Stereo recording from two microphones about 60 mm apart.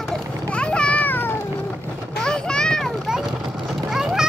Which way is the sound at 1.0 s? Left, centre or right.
Left.